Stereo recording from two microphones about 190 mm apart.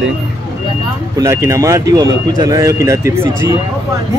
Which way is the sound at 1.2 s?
15° right (ahead or behind).